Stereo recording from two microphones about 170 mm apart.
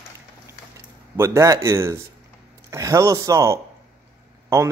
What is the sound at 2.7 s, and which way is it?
Speech, 20° right (ahead or behind).